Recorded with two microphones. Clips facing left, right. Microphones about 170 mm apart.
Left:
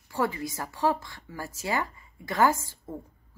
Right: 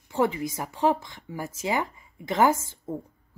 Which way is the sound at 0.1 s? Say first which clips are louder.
Right 4 dB; 20° right (ahead or behind).